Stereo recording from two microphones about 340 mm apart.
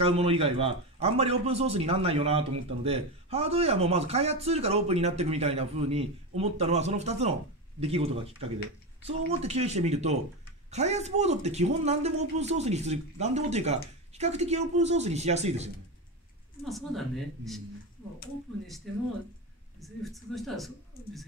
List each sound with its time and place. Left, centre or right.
0.0 s a man's voice: centre
16.6 s speech: centre
19.8 s speech: centre